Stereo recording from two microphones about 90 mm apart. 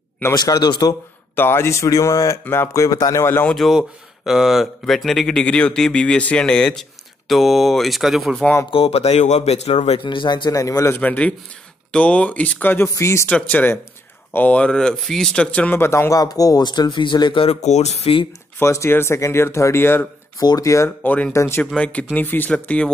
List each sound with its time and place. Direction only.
0.3 s speech: 50° left (ahead or behind)
1.3 s speech: 25° left (ahead or behind)
3.4 s speech: centre (ahead or behind)
8.6 s speech: 90° left
9.7 s speech: 65° left (ahead or behind)
10.5 s speech: 40° left (ahead or behind)
11.0 s speech: 15° left (ahead or behind); by 13.2 s 30° left (ahead or behind)
13.3 s speech: 20° left (ahead or behind); by 18.2 s 90° left
18.6 s speech: 30° left (ahead or behind)
20.3 s speech: 40° left (ahead or behind)
21.0 s speech: 20° left (ahead or behind)
21.3 s speech: 30° left (ahead or behind)
21.7 s speech: 15° left (ahead or behind)